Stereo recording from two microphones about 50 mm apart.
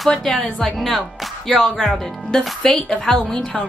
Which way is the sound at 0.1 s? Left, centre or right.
Centre.